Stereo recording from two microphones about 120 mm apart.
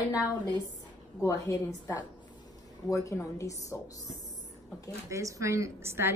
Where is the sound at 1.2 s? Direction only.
25° left (ahead or behind).